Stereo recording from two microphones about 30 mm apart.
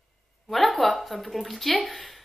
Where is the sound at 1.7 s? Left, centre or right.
Left.